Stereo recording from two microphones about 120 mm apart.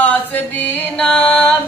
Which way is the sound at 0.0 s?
15° left (ahead or behind).